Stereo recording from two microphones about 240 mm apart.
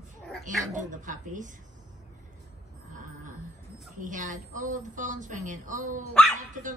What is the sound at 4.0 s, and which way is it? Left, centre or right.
A woman's voice, right.